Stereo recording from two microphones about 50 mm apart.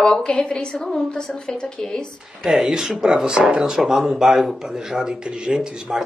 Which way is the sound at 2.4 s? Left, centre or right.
Centre.